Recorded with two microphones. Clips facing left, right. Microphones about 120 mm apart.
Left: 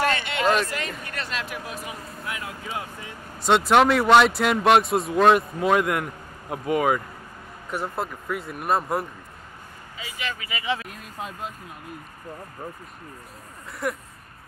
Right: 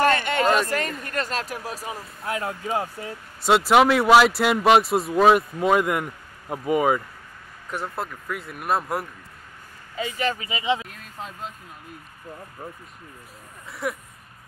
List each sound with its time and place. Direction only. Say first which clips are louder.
0.0 s a sound: right 4 dB; 45° right (ahead or behind)
0.7 s speech: right 5 dB; 45° right (ahead or behind)
3.4 s speech: right 1 dB; 5° right (ahead or behind)
9.9 s speech: right 8 dB; 45° right (ahead or behind)
10.5 s speech: right 4 dB; 20° right (ahead or behind)
10.9 s speech: left 2 dB; 5° left (ahead or behind)
13.8 s speech: left 1 dB; centre (ahead or behind)